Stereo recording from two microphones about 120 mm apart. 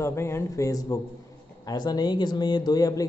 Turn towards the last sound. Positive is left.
turn(degrees=30)  # may be behind; listen again after turning